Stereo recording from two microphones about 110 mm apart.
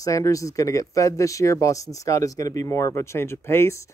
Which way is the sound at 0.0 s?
30° left (ahead or behind).